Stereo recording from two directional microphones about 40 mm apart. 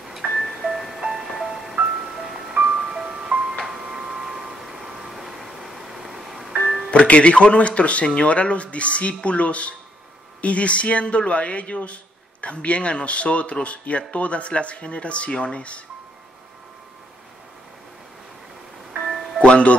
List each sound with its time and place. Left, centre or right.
0.1 s music: centre
3.6 s tick-tock: centre
4.8 s vehicle: centre
6.9 s speech: left
19.4 s speech: left